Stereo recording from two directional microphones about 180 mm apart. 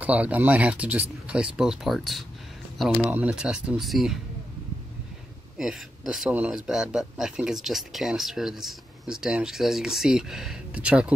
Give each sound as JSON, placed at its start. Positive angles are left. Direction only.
{"t": 0.0, "sound": "speech", "side_deg": -10}
{"t": 5.6, "sound": "speech", "side_deg": 0}